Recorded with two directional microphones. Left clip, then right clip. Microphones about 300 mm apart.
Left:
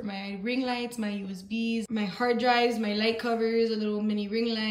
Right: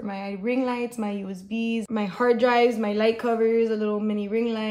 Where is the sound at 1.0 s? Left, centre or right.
Centre.